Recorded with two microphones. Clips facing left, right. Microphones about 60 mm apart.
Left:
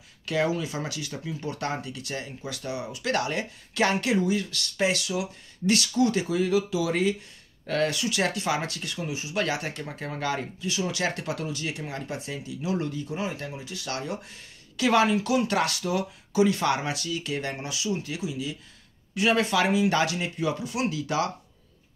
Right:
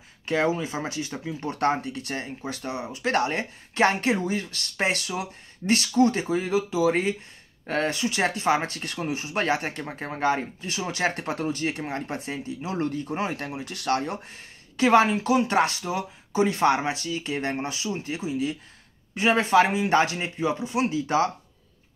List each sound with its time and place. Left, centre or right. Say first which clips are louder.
0.2 s speech: right 2 dB; right